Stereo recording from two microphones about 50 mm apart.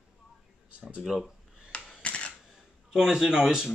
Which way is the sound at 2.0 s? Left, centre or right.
Left.